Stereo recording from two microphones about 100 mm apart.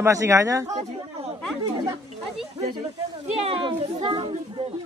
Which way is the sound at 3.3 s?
65° right (ahead or behind).